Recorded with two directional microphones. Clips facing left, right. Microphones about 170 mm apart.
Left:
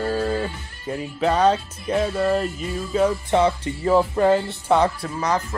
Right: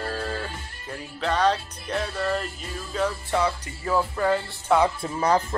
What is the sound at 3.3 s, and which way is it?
Music, 25° left (ahead or behind).